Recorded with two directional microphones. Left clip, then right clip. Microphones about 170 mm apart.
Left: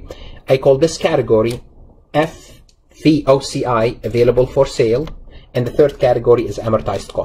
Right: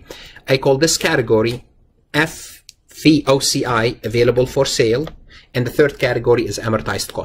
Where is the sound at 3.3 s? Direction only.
45° right (ahead or behind).